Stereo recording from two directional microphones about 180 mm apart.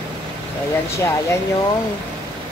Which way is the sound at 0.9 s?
15° left (ahead or behind).